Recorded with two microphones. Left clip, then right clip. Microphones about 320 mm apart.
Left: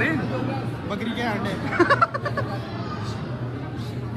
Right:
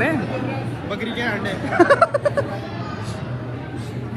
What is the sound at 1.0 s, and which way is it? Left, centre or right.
Speech, centre.